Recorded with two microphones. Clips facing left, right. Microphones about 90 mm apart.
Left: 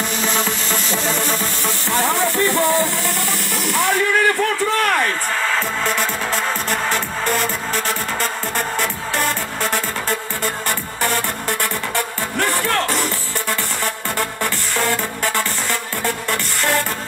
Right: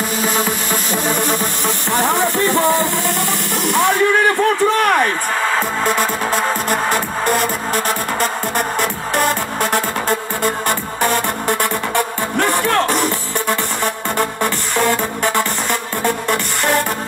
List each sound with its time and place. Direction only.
0.2 s music: 10° right (ahead or behind)
3.6 s a sound: 20° right (ahead or behind)
5.9 s music: 15° right (ahead or behind)